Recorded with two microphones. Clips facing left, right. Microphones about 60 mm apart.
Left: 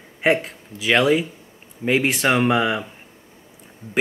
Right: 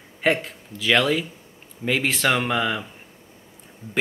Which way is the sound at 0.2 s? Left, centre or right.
Centre.